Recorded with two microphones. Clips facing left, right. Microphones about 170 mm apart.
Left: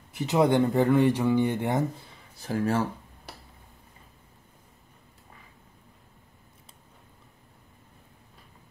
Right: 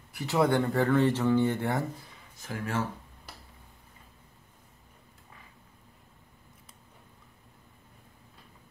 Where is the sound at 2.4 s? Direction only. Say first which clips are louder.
Left 6 dB; 35° left (ahead or behind).